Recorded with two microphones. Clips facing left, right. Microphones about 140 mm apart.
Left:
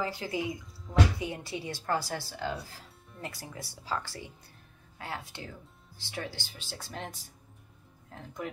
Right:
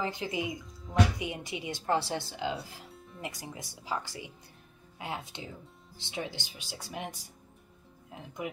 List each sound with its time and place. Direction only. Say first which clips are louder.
0.0 s a woman's voice: even; 20° right (ahead or behind)